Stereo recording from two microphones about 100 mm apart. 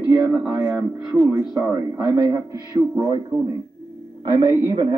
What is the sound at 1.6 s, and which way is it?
Speech, 10° right (ahead or behind).